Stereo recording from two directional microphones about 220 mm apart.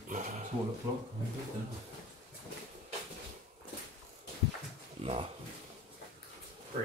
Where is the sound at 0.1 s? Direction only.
35° right (ahead or behind).